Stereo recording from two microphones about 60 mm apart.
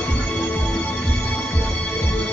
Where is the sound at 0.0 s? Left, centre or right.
Centre.